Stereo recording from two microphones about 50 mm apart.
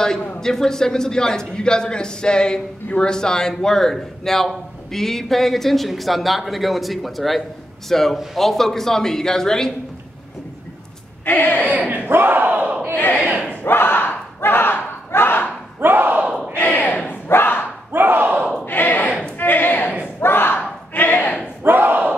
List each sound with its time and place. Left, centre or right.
0.4 s a man's voice: centre
11.2 s battle cry: left
11.6 s speech: right
12.1 s speech: right
12.9 s battle cry: left
15.8 s speech: right
16.5 s battle cry: left
17.9 s speech: right
18.7 s battle cry: left
20.2 s speech: left
21.6 s speech: right